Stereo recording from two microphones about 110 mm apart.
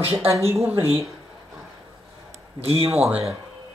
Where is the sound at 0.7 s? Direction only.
65° right (ahead or behind).